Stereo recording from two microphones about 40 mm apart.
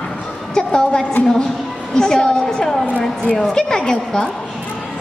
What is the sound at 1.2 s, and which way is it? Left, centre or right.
Speech, left.